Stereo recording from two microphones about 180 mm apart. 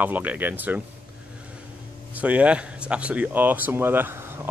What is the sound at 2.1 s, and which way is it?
Speech, 10° right (ahead or behind).